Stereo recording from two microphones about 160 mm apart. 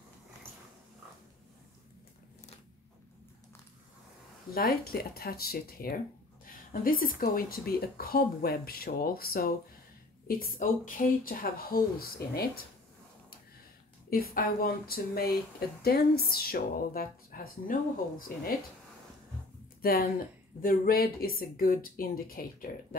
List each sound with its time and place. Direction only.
4.5 s speech: 70° left (ahead or behind)
14.1 s speech: 65° left (ahead or behind)
19.8 s a woman's voice: 70° left (ahead or behind)